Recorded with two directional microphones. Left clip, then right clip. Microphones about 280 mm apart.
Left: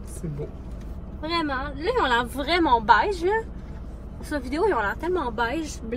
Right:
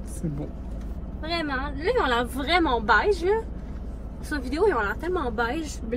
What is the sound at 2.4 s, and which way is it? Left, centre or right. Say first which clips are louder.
A woman's voice: left 2 dB; centre.